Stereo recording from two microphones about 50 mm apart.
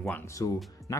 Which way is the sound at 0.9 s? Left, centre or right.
Left.